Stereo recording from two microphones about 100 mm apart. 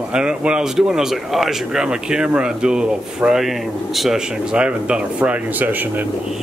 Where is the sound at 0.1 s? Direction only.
10° right (ahead or behind).